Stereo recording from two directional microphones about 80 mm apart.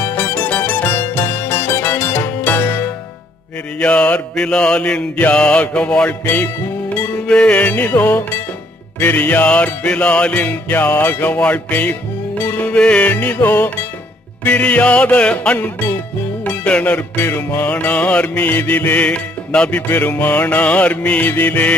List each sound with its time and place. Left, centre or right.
0.0 s music: left
3.8 s mantra: centre
6.2 s music: left
7.2 s music: centre
14.4 s mantra: centre
17.2 s music: left